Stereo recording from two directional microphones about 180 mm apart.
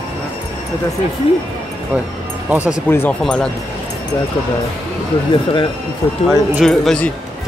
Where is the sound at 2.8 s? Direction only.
10° left (ahead or behind).